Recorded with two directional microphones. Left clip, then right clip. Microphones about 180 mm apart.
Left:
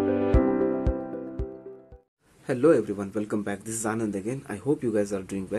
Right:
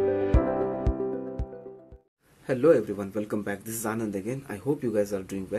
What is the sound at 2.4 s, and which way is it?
A man's voice, 20° left (ahead or behind).